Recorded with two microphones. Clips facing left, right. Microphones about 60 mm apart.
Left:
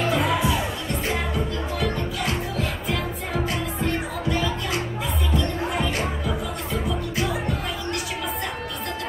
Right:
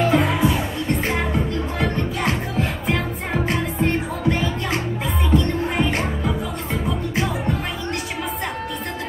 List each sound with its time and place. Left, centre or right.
0.1 s music: right